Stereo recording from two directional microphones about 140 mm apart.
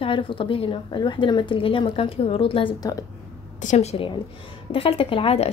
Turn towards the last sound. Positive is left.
turn(degrees=45)  # may be behind; listen again after turning